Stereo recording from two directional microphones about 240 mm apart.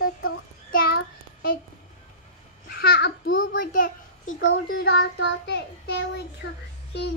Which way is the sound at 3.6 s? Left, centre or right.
Left.